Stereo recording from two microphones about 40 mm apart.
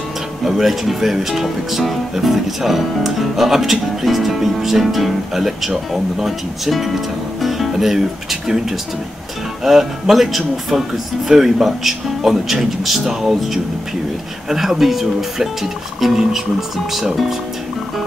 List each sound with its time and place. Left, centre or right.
0.5 s speech: centre